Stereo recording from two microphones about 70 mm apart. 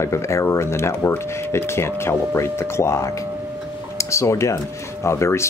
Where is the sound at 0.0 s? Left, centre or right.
Left.